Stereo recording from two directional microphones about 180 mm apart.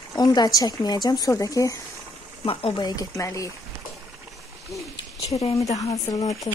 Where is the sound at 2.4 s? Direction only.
30° left (ahead or behind).